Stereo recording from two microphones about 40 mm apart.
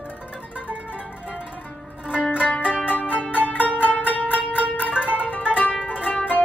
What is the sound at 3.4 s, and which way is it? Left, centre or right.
Music, left.